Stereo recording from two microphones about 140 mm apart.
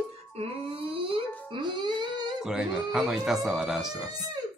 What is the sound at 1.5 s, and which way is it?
Music, 35° right (ahead or behind).